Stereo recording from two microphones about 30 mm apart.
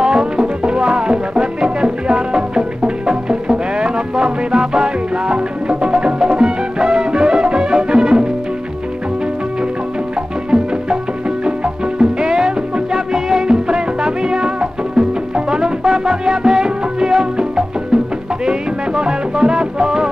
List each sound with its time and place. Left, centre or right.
0.0 s music: right
10.1 s music: right